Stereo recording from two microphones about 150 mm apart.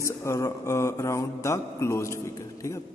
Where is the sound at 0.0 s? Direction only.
20° left (ahead or behind).